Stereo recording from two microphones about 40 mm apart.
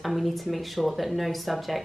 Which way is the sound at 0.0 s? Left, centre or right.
Centre.